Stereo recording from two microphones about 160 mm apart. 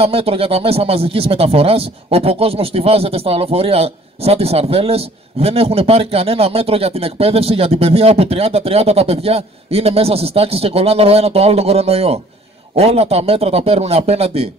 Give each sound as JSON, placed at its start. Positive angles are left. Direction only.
{"t": 0.0, "sound": "speech", "side_deg": -35}